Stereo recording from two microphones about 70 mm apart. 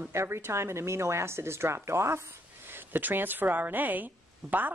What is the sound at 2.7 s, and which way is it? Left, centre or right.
A woman's voice, right.